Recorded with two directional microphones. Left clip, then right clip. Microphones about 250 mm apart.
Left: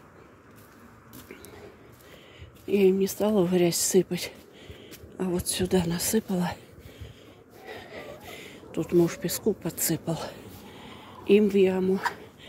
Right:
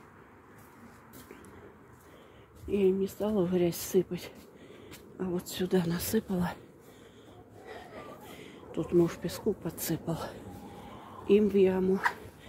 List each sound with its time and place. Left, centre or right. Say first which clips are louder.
2.6 s speech: left 5 dB; left
7.6 s a sound: left 5 dB; centre
10.9 s speech: left 4 dB; centre